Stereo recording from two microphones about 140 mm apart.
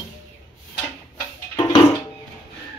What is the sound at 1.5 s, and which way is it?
Music, 30° left (ahead or behind).